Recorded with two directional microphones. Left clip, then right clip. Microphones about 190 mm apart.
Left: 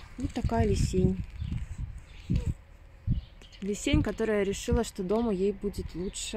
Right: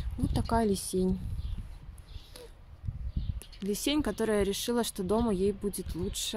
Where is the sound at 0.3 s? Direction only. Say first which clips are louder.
Right 1 dB; 5° right (ahead or behind).